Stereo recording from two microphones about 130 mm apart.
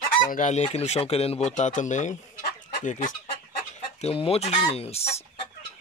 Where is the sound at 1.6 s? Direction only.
70° left (ahead or behind).